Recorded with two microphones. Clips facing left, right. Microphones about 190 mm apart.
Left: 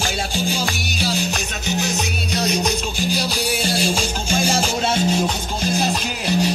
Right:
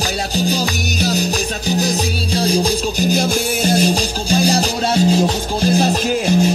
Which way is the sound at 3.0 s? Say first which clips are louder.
Right 5 dB; 45° right (ahead or behind).